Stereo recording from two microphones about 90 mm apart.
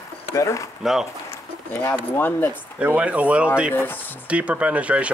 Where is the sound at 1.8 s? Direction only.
20° left (ahead or behind).